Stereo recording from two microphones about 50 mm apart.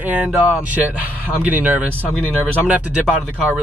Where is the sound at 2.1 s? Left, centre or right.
Left.